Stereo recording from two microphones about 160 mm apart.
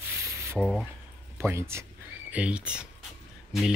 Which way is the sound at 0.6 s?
5° left (ahead or behind).